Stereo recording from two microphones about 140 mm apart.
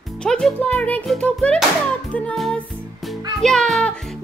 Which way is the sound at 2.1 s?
5° left (ahead or behind).